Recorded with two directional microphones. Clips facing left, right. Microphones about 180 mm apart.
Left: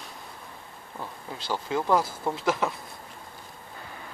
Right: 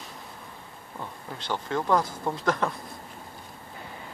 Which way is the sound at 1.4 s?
5° left (ahead or behind).